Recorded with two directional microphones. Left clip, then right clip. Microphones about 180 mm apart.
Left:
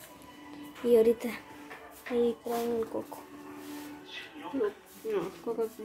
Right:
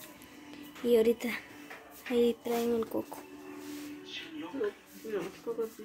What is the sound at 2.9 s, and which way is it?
Speech, 30° right (ahead or behind).